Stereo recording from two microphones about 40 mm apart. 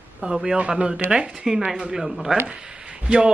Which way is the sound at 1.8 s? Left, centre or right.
Centre.